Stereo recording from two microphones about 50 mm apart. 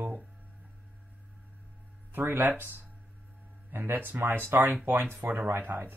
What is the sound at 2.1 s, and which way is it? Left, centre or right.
Speech, right.